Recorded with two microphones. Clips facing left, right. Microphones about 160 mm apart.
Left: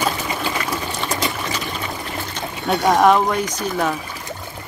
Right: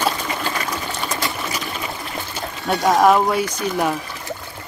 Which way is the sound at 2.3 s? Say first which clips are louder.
Left 1 dB; centre (ahead or behind).